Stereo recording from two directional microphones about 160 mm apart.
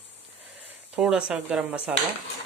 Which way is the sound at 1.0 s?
5° right (ahead or behind).